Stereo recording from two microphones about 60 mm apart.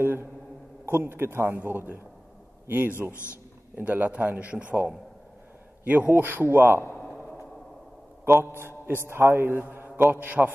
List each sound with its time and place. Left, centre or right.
0.0 s a sound: right
0.8 s a man's voice: right
3.7 s a man's voice: right
8.4 s a man's voice: right